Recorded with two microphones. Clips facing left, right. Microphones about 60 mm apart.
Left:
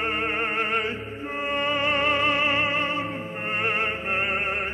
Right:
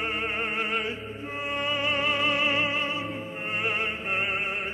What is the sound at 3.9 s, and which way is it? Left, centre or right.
Opera, centre.